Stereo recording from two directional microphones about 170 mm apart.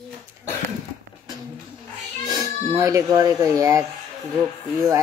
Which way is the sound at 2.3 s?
20° right (ahead or behind).